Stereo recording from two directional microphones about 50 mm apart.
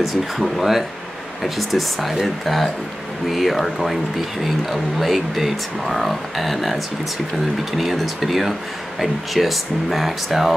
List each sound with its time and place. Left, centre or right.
0.0 s speech: centre